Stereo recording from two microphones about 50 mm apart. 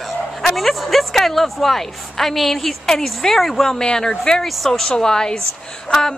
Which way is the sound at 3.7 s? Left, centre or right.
Centre.